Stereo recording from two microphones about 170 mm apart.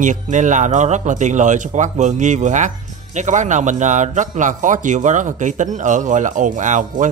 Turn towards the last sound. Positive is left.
turn(degrees=-50)  # may be behind; listen again after turning